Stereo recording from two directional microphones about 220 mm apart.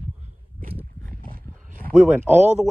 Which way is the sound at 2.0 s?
10° right (ahead or behind).